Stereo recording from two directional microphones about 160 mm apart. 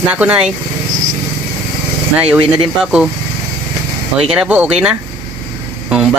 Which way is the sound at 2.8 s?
5° right (ahead or behind).